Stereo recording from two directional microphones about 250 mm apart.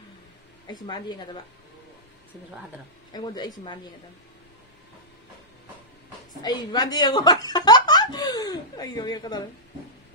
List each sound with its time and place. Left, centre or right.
0.7 s speech: centre
3.1 s speech: centre
6.4 s speech: centre